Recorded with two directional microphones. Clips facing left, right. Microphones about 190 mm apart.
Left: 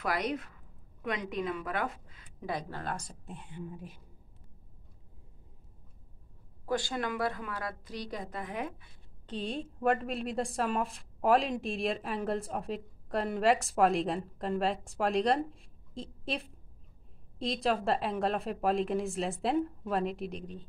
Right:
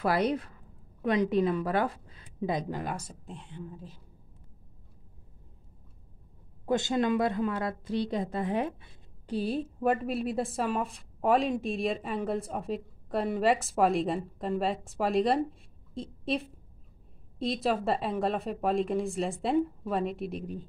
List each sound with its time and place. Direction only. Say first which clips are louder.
0.0 s speech: right 6 dB; 30° right (ahead or behind)
2.4 s a woman's voice: right 5 dB; 15° right (ahead or behind); by 4.0 s 15° left (ahead or behind)
6.6 s a woman's voice: right 6 dB; 20° right (ahead or behind)
9.2 s a woman's voice: right 6 dB; 10° right (ahead or behind)